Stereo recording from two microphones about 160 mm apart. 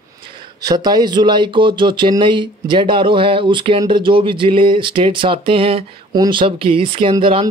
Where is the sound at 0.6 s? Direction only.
25° right (ahead or behind).